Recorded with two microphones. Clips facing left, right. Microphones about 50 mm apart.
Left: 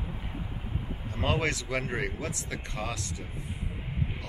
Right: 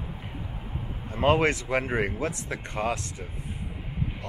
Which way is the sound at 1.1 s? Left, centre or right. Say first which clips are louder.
Right 7 dB; centre.